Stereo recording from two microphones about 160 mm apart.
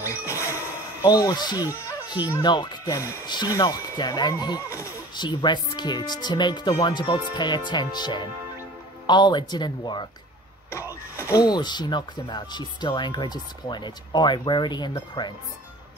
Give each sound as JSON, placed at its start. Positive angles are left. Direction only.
{"t": 1.0, "sound": "speech", "side_deg": 25}
{"t": 1.9, "sound": "music", "side_deg": 25}
{"t": 2.3, "sound": "speech", "side_deg": 30}
{"t": 11.1, "sound": "speech", "side_deg": 20}